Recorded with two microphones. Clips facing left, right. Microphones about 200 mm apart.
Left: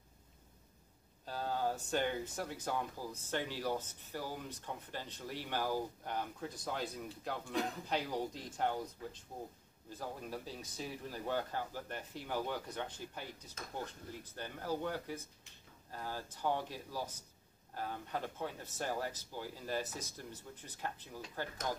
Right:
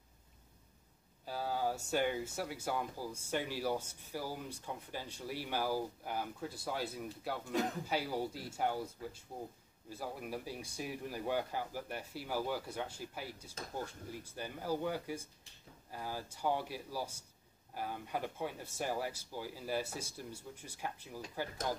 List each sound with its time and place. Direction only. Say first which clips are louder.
1.2 s speech: right 1 dB; 10° right (ahead or behind)